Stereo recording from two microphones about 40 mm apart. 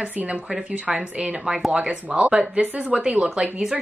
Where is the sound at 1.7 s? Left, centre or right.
Right.